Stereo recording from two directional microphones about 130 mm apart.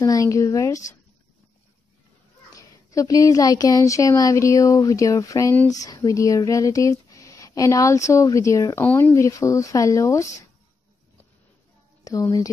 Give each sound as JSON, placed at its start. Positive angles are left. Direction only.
{"t": 0.0, "sound": "speech", "side_deg": 25}
{"t": 2.5, "sound": "speech", "side_deg": 25}
{"t": 12.0, "sound": "speech", "side_deg": 25}